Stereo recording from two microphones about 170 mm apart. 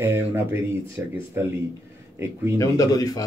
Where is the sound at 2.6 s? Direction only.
20° left (ahead or behind).